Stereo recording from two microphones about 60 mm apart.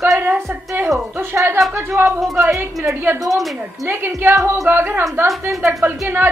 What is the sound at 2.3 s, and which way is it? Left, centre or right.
Speech, right.